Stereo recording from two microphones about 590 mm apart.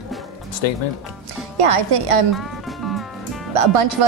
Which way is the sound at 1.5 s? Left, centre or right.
Right.